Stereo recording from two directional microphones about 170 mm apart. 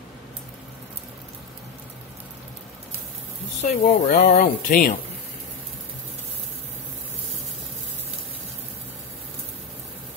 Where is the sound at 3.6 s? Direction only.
50° left (ahead or behind).